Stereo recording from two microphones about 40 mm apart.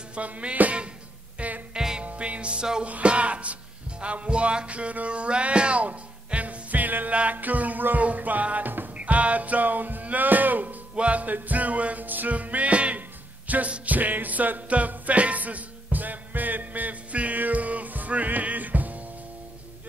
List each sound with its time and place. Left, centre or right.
0.1 s music: right
1.7 s music: centre
2.0 s music: right
7.1 s music: right